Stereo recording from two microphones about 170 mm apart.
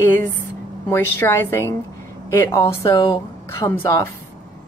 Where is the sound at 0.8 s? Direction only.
15° left (ahead or behind).